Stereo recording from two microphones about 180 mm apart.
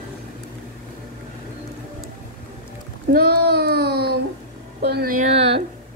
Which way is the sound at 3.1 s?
60° right (ahead or behind).